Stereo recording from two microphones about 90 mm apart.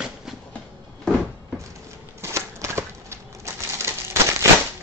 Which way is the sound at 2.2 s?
30° right (ahead or behind).